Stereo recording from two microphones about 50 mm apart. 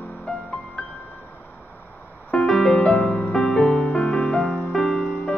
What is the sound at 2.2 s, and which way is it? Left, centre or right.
Piano, centre.